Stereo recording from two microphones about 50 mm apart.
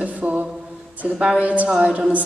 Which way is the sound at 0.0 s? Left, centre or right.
Right.